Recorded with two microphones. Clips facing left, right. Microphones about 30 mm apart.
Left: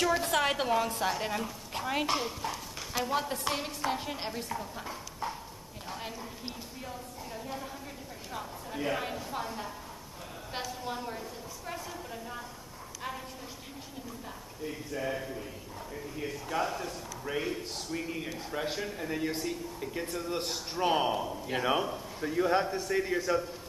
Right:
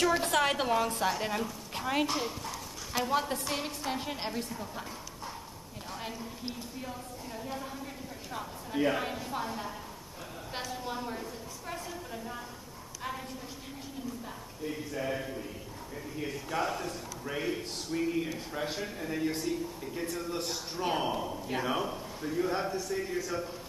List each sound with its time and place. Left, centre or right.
0.0 s a man's voice: centre
5.9 s a woman's voice: centre
8.7 s a man's voice: centre
10.5 s a sound: centre
14.6 s a man's voice: centre; by 20.5 s left
20.7 s a man's voice: centre
22.2 s a man's voice: centre
22.7 s a man's voice: left